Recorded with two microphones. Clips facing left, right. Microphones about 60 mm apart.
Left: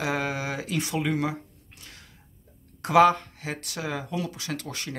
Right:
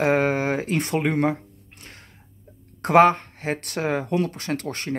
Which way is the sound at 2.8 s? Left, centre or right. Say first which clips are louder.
Right 3 dB; right.